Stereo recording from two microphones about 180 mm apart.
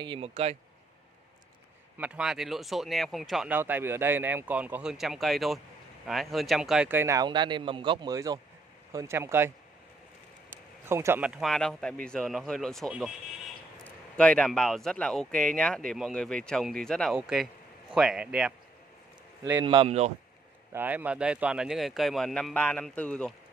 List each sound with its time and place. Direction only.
0.0 s speech: 30° right (ahead or behind)
2.0 s speech: 5° right (ahead or behind)
10.9 s speech: 15° right (ahead or behind)
19.6 s speech: 30° right (ahead or behind)
20.7 s speech: 10° right (ahead or behind)